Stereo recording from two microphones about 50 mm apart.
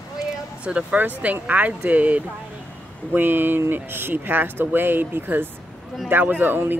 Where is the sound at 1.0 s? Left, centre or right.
Right.